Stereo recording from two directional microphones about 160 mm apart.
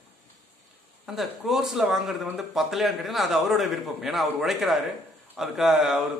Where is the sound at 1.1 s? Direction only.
Centre (ahead or behind).